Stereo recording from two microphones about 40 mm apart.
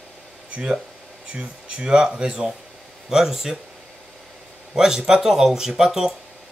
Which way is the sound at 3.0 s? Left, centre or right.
Centre.